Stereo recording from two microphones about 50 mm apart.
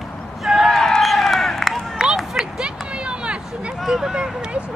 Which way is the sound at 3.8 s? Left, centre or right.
Centre.